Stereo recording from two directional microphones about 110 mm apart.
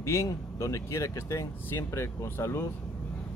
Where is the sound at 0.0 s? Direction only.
25° left (ahead or behind).